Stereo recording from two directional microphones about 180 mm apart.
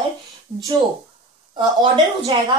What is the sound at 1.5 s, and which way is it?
A woman's voice, 20° right (ahead or behind).